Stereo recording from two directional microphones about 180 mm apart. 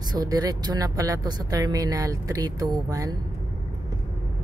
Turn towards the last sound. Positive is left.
turn(degrees=-20)  # may be behind; listen again after turning